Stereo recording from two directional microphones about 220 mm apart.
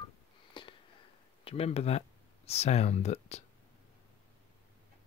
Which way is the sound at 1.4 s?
25° left (ahead or behind).